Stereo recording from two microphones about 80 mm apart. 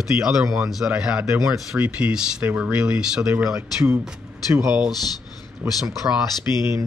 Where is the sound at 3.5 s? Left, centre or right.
Right.